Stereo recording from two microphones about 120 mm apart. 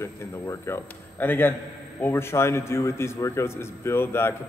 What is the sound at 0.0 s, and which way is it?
A man's voice, 20° left (ahead or behind).